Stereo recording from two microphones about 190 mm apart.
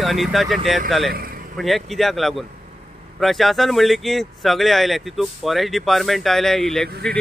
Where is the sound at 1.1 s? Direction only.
50° right (ahead or behind).